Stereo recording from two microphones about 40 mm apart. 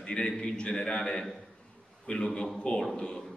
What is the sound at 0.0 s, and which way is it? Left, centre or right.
A man's voice, left.